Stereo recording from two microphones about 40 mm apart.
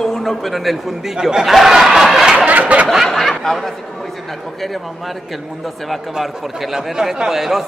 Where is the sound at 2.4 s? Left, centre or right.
Right.